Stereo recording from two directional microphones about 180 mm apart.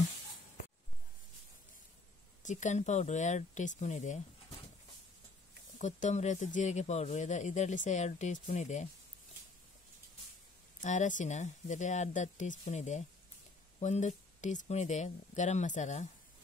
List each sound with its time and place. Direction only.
2.4 s speech: 40° left (ahead or behind)
5.8 s speech: 40° left (ahead or behind)
10.8 s speech: 45° left (ahead or behind)